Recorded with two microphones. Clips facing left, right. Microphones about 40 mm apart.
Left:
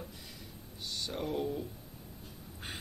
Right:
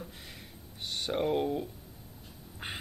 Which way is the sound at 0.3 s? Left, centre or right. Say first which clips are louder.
Right 1 dB; right.